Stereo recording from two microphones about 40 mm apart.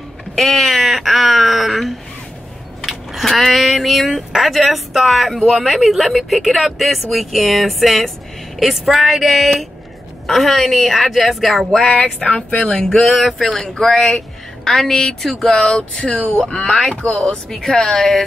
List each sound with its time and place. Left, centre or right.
0.4 s speech: centre
2.8 s a sound: centre
4.3 s speech: centre
11.9 s speech: left
12.7 s speech: centre
13.0 s speech: centre
13.6 s speech: centre
16.3 s speech: left
16.5 s speech: centre
17.0 s speech: centre
17.9 s speech: centre